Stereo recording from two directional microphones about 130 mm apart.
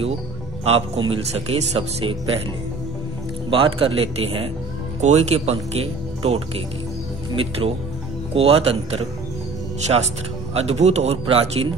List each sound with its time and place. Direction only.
0.7 s speech: 45° right (ahead or behind)
3.4 s speech: 45° right (ahead or behind)
5.0 s speech: 60° right (ahead or behind)
10.5 s speech: 55° right (ahead or behind)